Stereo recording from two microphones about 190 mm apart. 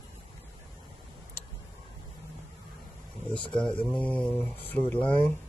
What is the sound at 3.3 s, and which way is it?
Speech, 25° left (ahead or behind).